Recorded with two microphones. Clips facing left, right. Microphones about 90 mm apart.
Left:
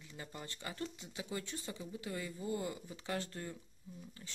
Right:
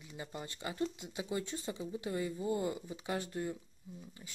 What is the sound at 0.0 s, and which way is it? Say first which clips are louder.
Speech: right 4 dB; 20° right (ahead or behind).